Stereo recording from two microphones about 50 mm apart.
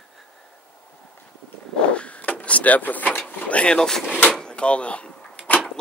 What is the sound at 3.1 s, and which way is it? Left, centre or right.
Drawer open or close, left.